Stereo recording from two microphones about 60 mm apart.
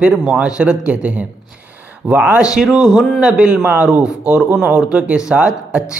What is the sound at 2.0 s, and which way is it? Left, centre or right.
Speech, centre.